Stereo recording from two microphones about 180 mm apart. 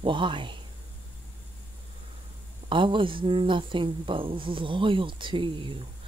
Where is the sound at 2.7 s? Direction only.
25° right (ahead or behind).